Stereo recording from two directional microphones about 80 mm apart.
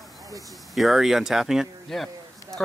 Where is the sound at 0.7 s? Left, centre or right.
Centre.